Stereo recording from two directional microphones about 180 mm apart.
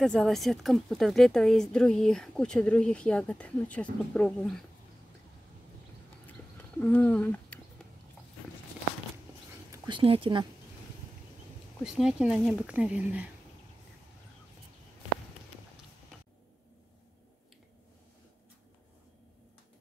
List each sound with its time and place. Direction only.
0.0 s a woman's voice: centre (ahead or behind)
6.8 s speech: 10° left (ahead or behind)
9.7 s speech: 25° right (ahead or behind)
11.8 s a woman's voice: 5° right (ahead or behind)